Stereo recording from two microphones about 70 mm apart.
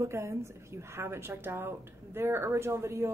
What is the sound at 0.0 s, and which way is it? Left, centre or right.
A woman's voice, right.